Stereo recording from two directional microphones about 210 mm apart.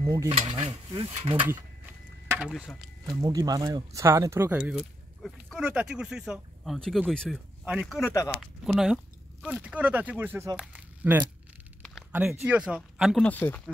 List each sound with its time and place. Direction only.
0.0 s speech: 15° right (ahead or behind)
2.2 s a sound: 5° right (ahead or behind)
3.2 s speech: 15° right (ahead or behind); by 8.0 s centre (ahead or behind)
8.0 s speech: 15° left (ahead or behind)
8.4 s speech: centre (ahead or behind)